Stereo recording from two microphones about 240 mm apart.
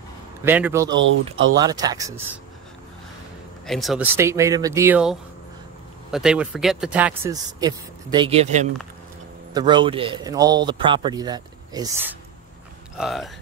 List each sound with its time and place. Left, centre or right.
0.4 s a man's voice: centre
0.9 s speech: right
1.6 s a man's voice: centre
3.6 s a man's voice: centre
7.6 s a man's voice: centre